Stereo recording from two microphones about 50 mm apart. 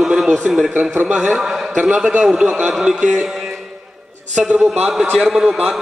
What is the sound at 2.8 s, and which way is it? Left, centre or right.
Speech, centre.